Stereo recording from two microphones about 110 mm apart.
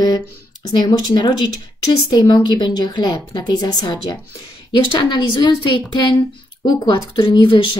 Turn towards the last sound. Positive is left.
turn(degrees=45)  # may be behind; listen again after turning